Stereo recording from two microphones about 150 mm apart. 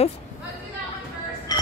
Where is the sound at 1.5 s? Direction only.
25° left (ahead or behind).